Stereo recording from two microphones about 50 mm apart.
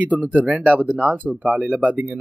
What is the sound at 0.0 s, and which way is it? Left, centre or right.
Speech, right.